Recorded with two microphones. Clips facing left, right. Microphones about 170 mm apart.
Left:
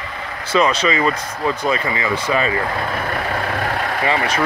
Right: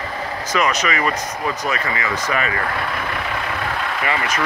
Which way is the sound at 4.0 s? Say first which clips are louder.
Left 4 dB; 30° left (ahead or behind).